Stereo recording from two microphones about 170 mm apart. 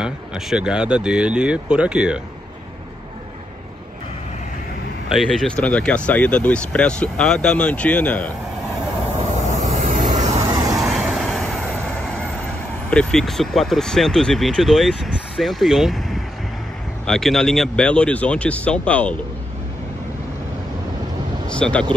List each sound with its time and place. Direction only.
0.0 s speech: 5° right (ahead or behind)
5.1 s speech: centre (ahead or behind)
9.7 s vehicle: 45° right (ahead or behind)
10.4 s vehicle: 20° right (ahead or behind)
10.8 s vehicle: centre (ahead or behind)
12.9 s speech: 5° left (ahead or behind)
21.5 s speech: 5° left (ahead or behind)